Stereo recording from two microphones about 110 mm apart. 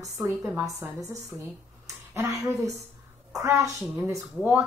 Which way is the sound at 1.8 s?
25° right (ahead or behind).